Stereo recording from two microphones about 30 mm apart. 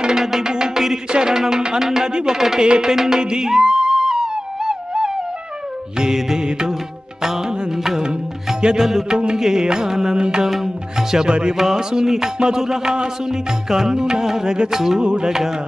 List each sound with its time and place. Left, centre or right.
0.0 s music: centre
2.6 s music: right
2.9 s music: centre
3.2 s music: right
3.4 s music: centre
10.1 s music: right
10.4 s music: centre
11.2 s music: right
11.5 s music: centre